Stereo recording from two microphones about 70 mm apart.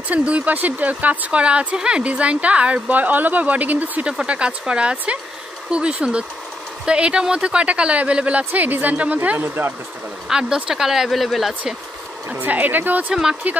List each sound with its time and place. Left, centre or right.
0.1 s a woman's voice: centre
10.3 s speech: centre
12.3 s a woman's voice: right
13.1 s speech: centre